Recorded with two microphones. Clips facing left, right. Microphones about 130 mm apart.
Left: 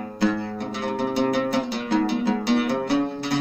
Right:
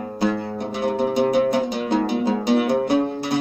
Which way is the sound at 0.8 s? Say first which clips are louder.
Right 4 dB; 15° right (ahead or behind).